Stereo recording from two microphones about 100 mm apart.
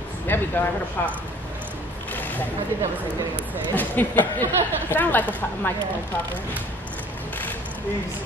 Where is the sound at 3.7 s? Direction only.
20° left (ahead or behind).